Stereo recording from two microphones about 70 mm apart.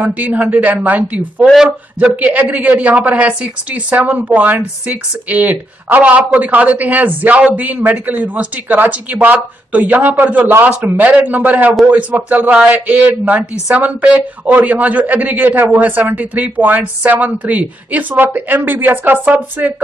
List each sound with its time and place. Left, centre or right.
0.0 s a woman's voice: right
1.4 s a man's voice: centre
2.0 s a woman's voice: centre